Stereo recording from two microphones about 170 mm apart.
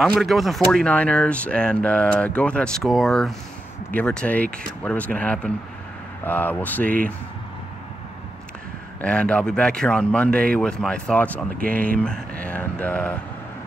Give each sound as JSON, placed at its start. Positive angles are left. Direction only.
{"t": 0.0, "sound": "speech", "side_deg": 0}
{"t": 9.0, "sound": "speech", "side_deg": 5}
{"t": 11.5, "sound": "speech", "side_deg": -55}
{"t": 12.0, "sound": "speech", "side_deg": 5}